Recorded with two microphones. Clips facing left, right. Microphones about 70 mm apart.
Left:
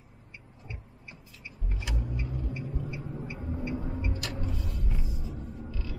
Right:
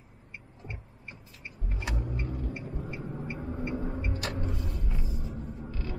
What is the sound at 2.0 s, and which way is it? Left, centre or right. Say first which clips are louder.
Vehicle: right 1 dB; right.